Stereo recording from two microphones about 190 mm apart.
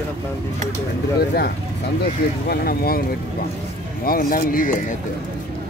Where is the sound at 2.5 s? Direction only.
50° left (ahead or behind).